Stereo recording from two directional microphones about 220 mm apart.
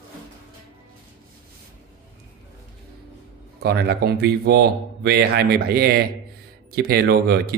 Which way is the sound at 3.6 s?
45° right (ahead or behind).